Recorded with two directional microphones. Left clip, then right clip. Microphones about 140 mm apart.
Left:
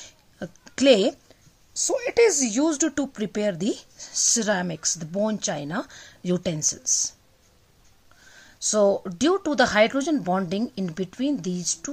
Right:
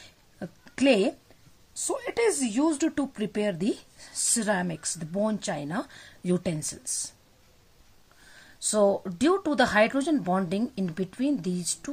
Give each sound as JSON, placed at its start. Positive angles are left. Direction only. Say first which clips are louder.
{"t": 0.0, "sound": "a sound", "louder": "left 4 dB", "side_deg": 35}
{"t": 1.8, "sound": "a woman's voice", "louder": "left 8 dB", "side_deg": 45}
{"t": 8.6, "sound": "speech", "louder": "left 3 dB", "side_deg": 15}